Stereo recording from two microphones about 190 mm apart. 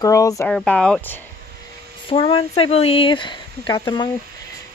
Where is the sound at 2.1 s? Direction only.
30° left (ahead or behind).